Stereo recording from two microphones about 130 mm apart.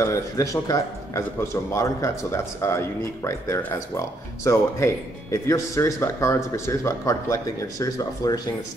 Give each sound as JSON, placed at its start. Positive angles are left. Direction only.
{"t": 0.0, "sound": "speech", "side_deg": 25}